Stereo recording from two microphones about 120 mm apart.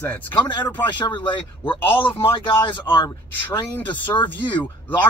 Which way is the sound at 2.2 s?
45° left (ahead or behind).